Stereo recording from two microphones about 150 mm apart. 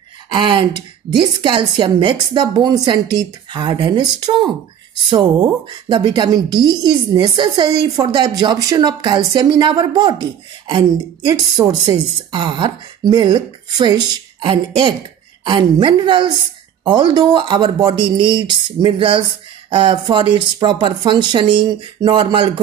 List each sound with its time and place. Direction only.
0.3 s a woman's voice: 30° right (ahead or behind)
11.6 s a woman's voice: 25° right (ahead or behind)